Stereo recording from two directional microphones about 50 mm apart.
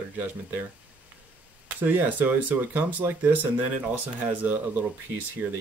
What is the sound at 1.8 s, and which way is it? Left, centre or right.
Speech, right.